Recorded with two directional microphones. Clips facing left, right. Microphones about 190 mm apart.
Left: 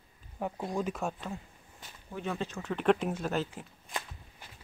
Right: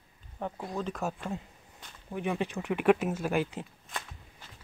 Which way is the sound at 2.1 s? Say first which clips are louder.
Right 4 dB; 15° right (ahead or behind).